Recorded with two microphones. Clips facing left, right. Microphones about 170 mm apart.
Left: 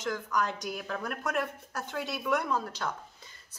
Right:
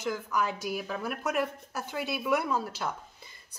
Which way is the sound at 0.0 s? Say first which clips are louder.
Right 1 dB; 5° right (ahead or behind).